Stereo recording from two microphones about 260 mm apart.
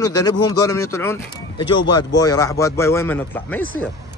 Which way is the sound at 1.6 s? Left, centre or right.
Left.